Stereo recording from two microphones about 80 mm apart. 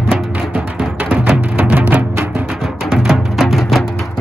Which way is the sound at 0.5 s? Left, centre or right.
Centre.